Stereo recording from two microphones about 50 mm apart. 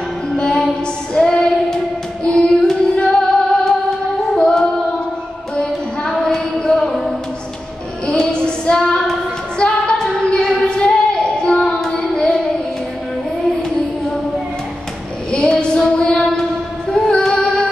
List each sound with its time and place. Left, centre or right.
0.4 s music: left
1.1 s female singing: centre
2.2 s carnatic music: centre
3.0 s music: centre
4.4 s singing: centre
5.6 s music: centre
8.1 s child singing: centre
9.6 s female singing: centre
11.8 s child singing: centre
15.6 s female singing: centre
16.9 s music: centre